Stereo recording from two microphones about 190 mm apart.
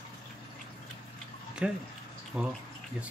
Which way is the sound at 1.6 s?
5° right (ahead or behind).